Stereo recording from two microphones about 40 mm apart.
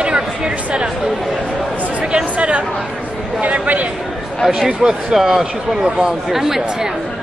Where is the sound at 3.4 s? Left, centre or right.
Right.